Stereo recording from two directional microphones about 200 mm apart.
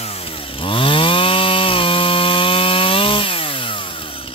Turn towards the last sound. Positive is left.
turn(degrees=25)  # may be behind; listen again after turning